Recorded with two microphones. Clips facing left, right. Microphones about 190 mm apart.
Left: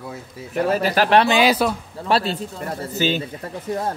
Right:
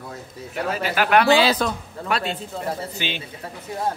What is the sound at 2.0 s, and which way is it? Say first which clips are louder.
Speech: left 5 dB; 30° left (ahead or behind).